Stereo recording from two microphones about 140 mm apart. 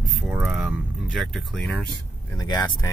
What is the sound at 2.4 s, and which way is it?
Speech, 30° left (ahead or behind).